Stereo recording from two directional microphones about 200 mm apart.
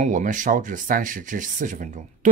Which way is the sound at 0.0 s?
40° right (ahead or behind).